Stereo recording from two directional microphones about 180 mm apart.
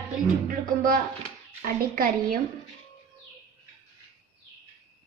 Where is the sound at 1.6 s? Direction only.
50° right (ahead or behind).